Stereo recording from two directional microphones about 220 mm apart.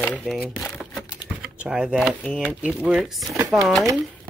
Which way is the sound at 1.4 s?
5° right (ahead or behind).